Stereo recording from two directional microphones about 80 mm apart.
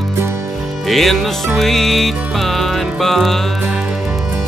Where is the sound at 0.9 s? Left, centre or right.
Centre.